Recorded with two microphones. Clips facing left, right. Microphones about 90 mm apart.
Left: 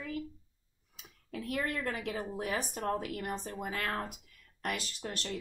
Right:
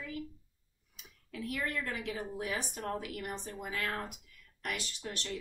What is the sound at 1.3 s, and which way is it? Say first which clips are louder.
A woman's voice: left 2 dB; 40° left (ahead or behind).